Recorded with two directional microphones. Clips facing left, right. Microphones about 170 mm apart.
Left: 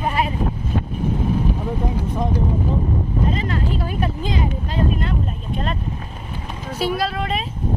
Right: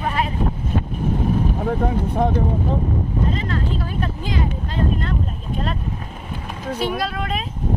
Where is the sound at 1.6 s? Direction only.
65° right (ahead or behind).